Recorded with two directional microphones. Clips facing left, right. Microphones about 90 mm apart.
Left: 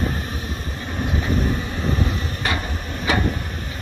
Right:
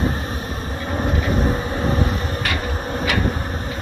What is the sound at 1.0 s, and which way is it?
Vehicle, 35° right (ahead or behind).